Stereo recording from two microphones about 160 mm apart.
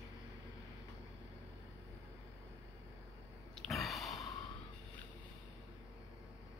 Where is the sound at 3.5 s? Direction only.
Centre (ahead or behind).